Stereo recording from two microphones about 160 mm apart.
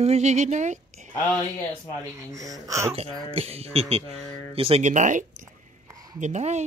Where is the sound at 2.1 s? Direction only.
20° right (ahead or behind).